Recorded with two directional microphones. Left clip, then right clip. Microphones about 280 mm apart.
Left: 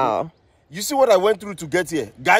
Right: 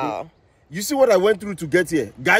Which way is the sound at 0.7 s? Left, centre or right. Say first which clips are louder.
Even; centre.